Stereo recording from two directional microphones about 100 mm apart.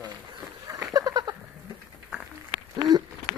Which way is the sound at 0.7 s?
35° right (ahead or behind).